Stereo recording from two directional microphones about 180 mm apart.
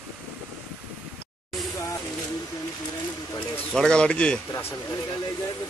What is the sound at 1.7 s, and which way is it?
Vehicle, 20° left (ahead or behind).